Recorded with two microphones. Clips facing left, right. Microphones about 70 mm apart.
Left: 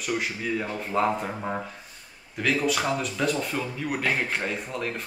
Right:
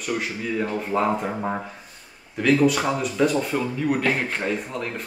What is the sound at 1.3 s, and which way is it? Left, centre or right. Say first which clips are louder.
Speech: right 4 dB; centre.